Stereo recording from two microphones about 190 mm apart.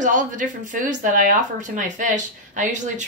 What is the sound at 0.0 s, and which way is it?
Speech, 40° right (ahead or behind).